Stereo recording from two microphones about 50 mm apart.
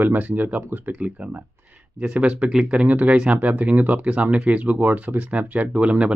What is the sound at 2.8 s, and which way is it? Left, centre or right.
Speech, right.